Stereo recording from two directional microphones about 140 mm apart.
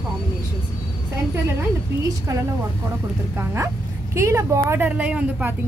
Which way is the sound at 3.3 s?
20° right (ahead or behind).